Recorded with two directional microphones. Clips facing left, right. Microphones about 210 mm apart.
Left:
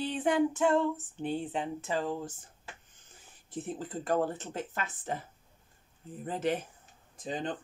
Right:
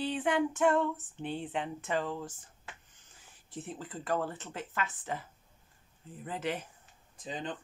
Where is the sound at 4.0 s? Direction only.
45° left (ahead or behind).